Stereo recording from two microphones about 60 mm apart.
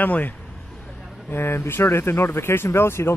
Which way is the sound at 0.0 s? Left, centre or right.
Left.